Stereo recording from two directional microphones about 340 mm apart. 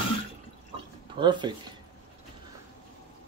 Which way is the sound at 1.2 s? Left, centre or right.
Centre.